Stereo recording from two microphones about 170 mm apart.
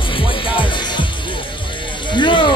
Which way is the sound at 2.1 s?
30° left (ahead or behind).